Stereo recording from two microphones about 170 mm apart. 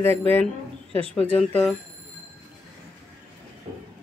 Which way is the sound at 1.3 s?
5° left (ahead or behind).